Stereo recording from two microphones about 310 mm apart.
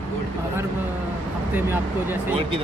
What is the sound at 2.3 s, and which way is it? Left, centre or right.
Speech, centre.